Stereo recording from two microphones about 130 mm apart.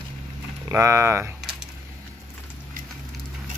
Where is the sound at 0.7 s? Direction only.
20° right (ahead or behind).